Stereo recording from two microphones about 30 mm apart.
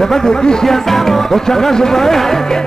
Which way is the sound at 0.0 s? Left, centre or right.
Centre.